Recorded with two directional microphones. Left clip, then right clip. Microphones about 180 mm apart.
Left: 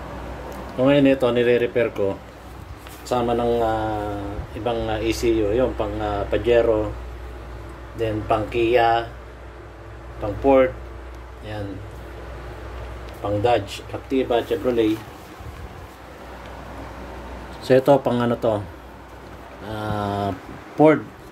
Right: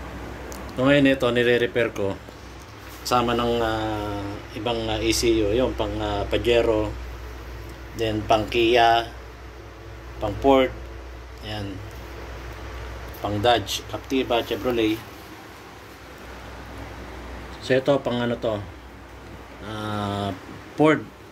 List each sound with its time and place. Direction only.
0.7 s speech: 5° right (ahead or behind)
8.0 s speech: 5° right (ahead or behind)
10.4 s speech: 5° left (ahead or behind)
13.2 s speech: centre (ahead or behind)
14.0 s speech: 10° left (ahead or behind)
17.6 s speech: 25° left (ahead or behind)
19.7 s speech: 10° left (ahead or behind)